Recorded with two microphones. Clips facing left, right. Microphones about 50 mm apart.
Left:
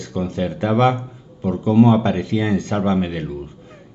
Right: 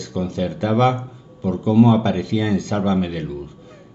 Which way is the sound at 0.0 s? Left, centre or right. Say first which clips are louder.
Even; left.